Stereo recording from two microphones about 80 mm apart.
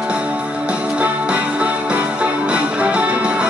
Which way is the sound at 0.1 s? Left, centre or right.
Centre.